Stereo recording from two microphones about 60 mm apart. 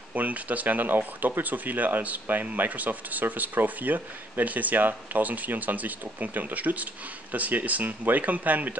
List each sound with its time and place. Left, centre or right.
0.1 s speech: right